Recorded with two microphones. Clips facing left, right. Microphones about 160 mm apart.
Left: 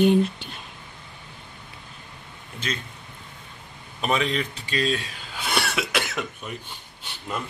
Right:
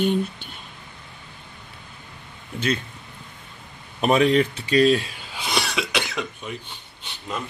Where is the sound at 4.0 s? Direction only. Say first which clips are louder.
Right 7 dB; 40° right (ahead or behind).